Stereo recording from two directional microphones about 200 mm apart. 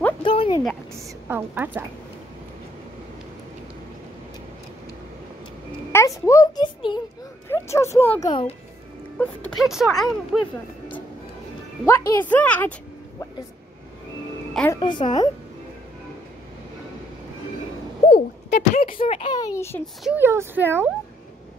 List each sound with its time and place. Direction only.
0.2 s a sound: 25° left (ahead or behind)
0.9 s speech: 10° right (ahead or behind)
5.9 s a child's voice: 15° left (ahead or behind)
8.3 s a woman's voice: 25° left (ahead or behind)
9.2 s speech: 5° left (ahead or behind)
11.8 s a child's voice: 15° left (ahead or behind)
14.7 s a woman's voice: 25° left (ahead or behind)
18.0 s a child's voice: 35° left (ahead or behind); by 19.8 s 15° left (ahead or behind)
20.0 s speech: 5° right (ahead or behind)